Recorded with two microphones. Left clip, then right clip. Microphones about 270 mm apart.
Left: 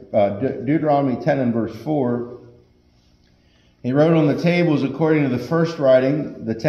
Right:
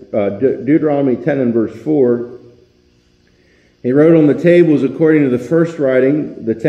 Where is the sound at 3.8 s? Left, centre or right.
Left.